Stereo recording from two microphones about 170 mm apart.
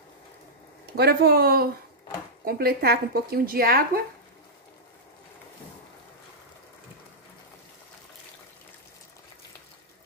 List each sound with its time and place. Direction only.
0.9 s speech: 70° right (ahead or behind)